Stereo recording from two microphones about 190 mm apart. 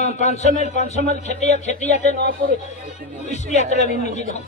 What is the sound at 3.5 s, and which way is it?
Speech, 35° left (ahead or behind).